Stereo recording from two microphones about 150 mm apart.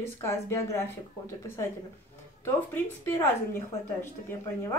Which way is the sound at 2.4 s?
15° left (ahead or behind).